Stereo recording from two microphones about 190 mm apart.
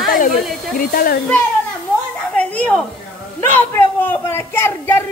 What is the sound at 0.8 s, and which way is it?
Speech, 50° left (ahead or behind).